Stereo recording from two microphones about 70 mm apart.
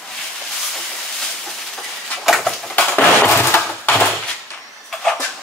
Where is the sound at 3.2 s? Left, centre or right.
Left.